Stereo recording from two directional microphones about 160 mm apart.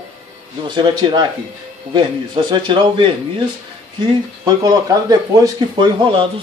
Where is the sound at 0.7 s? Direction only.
30° right (ahead or behind).